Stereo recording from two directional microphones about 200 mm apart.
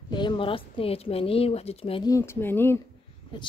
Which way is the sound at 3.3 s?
25° left (ahead or behind).